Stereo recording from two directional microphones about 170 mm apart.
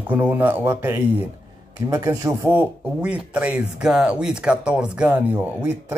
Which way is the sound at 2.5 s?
5° right (ahead or behind).